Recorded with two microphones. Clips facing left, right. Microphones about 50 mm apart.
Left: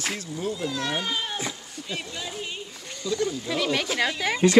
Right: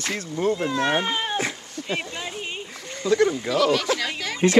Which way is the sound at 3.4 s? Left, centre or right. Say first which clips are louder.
Right 6 dB; right.